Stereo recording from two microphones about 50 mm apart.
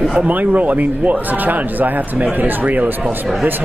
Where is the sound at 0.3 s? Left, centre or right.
Right.